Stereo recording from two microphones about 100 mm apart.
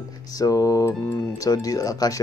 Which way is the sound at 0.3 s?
35° left (ahead or behind).